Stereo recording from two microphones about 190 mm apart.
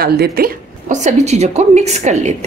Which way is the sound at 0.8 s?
35° right (ahead or behind).